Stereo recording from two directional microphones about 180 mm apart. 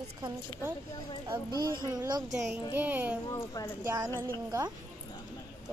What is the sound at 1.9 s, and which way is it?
Speech, 20° right (ahead or behind).